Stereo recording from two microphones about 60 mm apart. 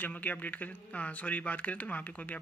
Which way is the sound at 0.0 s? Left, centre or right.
Left.